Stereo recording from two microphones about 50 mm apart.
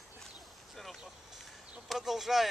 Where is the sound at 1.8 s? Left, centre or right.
Centre.